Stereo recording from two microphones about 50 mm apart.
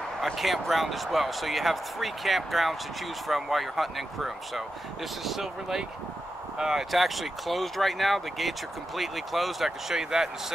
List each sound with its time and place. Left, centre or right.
0.2 s speech: centre